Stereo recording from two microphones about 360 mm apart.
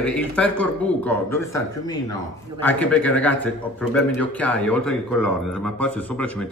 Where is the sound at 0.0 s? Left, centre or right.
Centre.